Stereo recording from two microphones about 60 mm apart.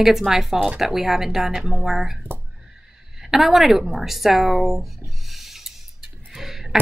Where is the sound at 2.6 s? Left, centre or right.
Centre.